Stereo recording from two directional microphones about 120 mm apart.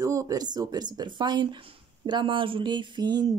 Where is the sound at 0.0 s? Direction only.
25° right (ahead or behind).